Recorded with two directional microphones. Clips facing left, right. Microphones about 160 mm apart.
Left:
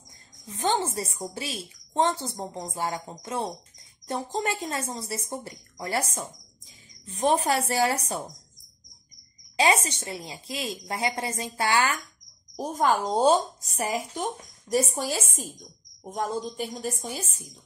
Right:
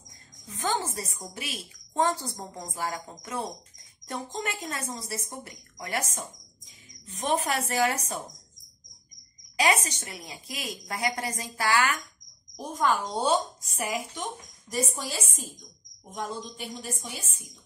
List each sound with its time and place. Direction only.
0.5 s a woman's voice: 25° left (ahead or behind)
9.6 s a woman's voice: 30° left (ahead or behind)
12.5 s speech: 40° left (ahead or behind)